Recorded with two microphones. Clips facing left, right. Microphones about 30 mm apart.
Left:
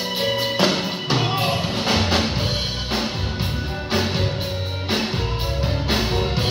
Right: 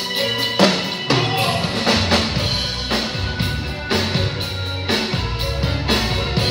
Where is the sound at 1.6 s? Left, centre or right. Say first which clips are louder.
Right 3 dB; right.